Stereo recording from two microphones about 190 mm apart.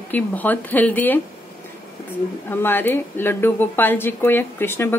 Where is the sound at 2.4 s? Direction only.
10° left (ahead or behind).